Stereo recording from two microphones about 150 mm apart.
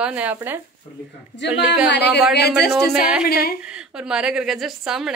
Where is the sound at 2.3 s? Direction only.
90° left.